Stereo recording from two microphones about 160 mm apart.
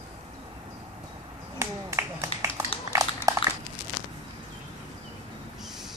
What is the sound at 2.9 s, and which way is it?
Dog, 20° right (ahead or behind).